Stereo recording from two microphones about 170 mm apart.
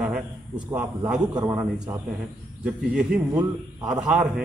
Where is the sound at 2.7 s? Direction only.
5° right (ahead or behind).